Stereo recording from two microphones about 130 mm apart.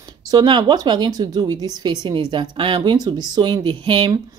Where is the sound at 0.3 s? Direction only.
35° right (ahead or behind).